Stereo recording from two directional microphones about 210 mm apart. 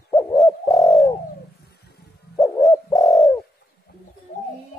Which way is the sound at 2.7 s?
15° left (ahead or behind).